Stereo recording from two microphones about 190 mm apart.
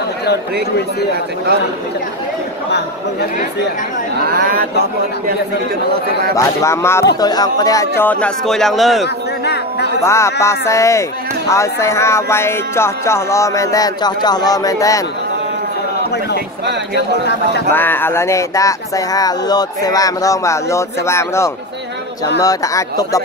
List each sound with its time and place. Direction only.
4.2 s speech: 55° right (ahead or behind)
6.3 s speech: 15° left (ahead or behind)
9.0 s a sound: 60° left (ahead or behind)
10.0 s speech: 15° left (ahead or behind)
16.9 s speech: 60° left (ahead or behind)
17.7 s speech: 10° left (ahead or behind)